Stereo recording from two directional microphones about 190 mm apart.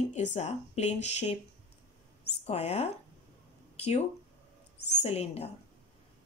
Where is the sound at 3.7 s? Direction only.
35° left (ahead or behind).